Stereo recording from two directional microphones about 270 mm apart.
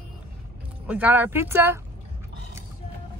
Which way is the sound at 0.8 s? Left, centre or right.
Centre.